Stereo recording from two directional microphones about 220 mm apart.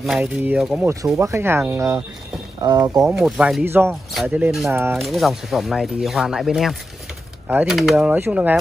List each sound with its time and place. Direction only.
0.0 s speech: centre (ahead or behind); by 3.0 s 15° right (ahead or behind)
3.0 s speech: centre (ahead or behind)